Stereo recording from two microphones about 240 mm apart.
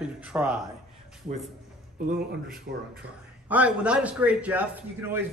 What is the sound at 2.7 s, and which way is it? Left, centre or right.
Speech, right.